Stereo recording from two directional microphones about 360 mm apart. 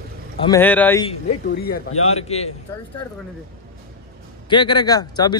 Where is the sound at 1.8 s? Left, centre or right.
Left.